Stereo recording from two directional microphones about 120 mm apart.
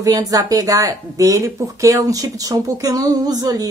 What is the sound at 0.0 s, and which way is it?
A woman's voice, 30° right (ahead or behind).